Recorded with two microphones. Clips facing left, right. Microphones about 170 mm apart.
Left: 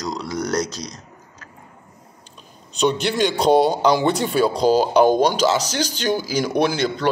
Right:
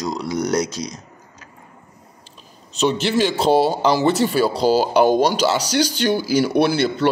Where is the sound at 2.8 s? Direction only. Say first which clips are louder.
Right 1 dB; 5° right (ahead or behind).